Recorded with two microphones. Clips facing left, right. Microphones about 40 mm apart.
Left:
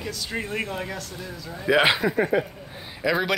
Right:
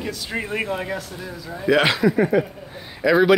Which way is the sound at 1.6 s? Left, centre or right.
Centre.